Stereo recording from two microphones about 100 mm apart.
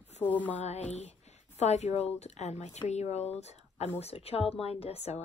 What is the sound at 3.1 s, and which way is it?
Speech, 90° left.